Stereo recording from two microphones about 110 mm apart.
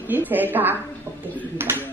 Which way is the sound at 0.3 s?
15° right (ahead or behind).